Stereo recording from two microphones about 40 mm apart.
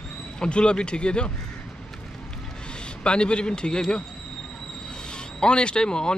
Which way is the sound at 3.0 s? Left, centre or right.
Left.